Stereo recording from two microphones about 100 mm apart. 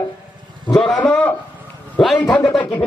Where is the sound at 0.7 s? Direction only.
5° left (ahead or behind).